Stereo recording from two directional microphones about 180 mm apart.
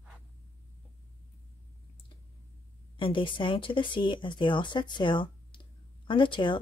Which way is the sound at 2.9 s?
30° left (ahead or behind).